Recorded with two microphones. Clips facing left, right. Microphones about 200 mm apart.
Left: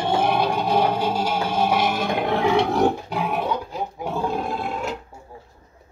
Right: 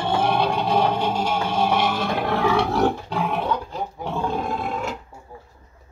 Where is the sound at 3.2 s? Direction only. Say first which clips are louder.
Even; 10° left (ahead or behind).